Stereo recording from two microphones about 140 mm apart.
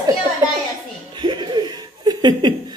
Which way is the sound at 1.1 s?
35° right (ahead or behind).